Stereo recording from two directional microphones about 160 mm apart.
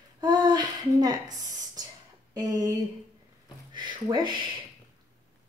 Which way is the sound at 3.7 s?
30° right (ahead or behind).